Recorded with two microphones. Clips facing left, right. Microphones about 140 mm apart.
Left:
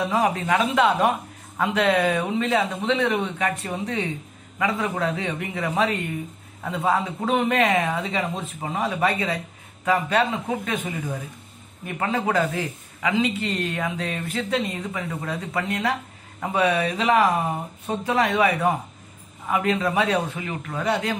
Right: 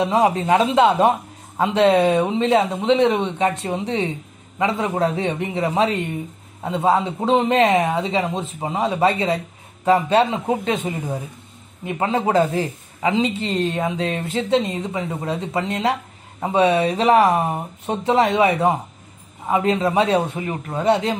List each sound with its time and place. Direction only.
0.0 s speech: 25° right (ahead or behind)